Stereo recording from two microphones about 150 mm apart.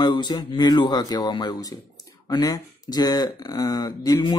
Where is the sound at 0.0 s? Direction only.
30° left (ahead or behind).